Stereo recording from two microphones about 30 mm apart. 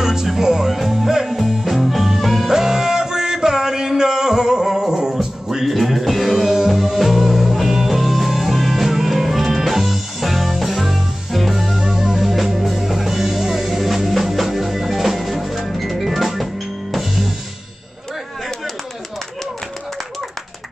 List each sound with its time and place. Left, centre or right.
0.0 s music: centre
0.4 s speech: centre
0.7 s music: centre
2.5 s music: centre
6.4 s music: centre
6.7 s music: centre
11.8 s music: centre